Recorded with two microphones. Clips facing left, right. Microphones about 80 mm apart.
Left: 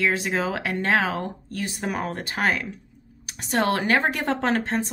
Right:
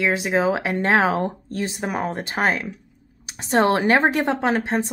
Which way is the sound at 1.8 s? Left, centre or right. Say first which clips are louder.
Right 1 dB; centre.